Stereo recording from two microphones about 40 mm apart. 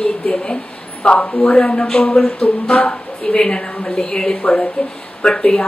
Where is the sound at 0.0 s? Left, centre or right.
Left.